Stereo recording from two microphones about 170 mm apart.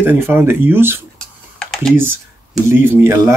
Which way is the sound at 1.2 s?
5° left (ahead or behind).